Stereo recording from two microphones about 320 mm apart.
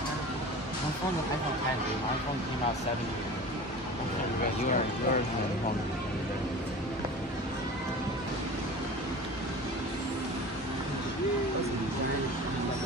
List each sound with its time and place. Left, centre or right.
4.6 s speech: left